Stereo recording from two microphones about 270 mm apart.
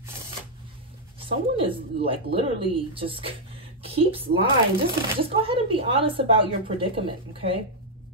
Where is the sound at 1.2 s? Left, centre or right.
Centre.